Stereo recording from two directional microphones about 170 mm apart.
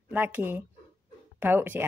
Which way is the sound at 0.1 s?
10° right (ahead or behind).